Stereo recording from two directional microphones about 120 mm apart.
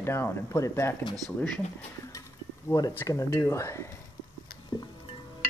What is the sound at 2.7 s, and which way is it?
Speech, 30° left (ahead or behind).